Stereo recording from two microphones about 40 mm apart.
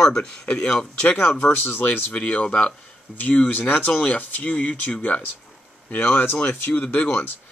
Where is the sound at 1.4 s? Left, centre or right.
Left.